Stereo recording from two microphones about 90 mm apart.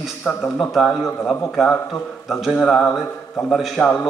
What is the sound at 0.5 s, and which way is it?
A man's voice, centre (ahead or behind).